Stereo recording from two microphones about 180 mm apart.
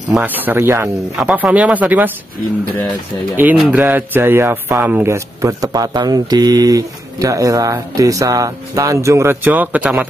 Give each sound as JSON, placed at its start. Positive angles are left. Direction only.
{"t": 0.1, "sound": "speech", "side_deg": -10}
{"t": 3.3, "sound": "speech", "side_deg": -10}